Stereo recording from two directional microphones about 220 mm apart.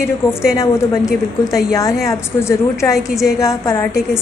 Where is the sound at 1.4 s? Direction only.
15° left (ahead or behind).